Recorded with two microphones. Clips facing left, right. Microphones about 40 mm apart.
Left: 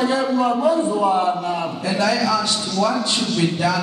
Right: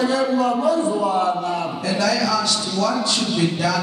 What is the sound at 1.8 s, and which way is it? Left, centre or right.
A man's voice, left.